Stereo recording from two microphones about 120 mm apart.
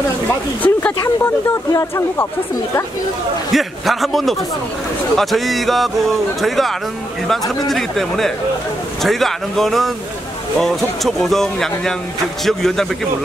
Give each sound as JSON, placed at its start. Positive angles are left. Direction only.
{"t": 0.3, "sound": "speech", "side_deg": 15}
{"t": 1.7, "sound": "speech", "side_deg": 25}
{"t": 3.5, "sound": "speech", "side_deg": 0}
{"t": 7.7, "sound": "speech", "side_deg": 0}